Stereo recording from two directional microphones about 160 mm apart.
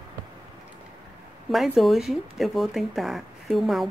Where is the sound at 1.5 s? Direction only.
Centre (ahead or behind).